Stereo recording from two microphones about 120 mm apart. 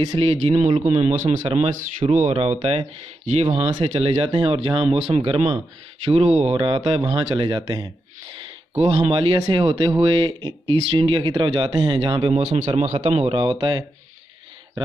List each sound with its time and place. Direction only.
0.2 s speech: 55° right (ahead or behind); by 1.4 s 90° right
1.5 s speech: 50° right (ahead or behind)
2.2 s speech: 60° right (ahead or behind)
4.3 s speech: 45° right (ahead or behind)
4.8 s speech: 65° right (ahead or behind); by 7.9 s 35° right (ahead or behind)
9.1 s speech: 45° right (ahead or behind)
12.4 s speech: 65° right (ahead or behind)
13.3 s speech: 45° right (ahead or behind)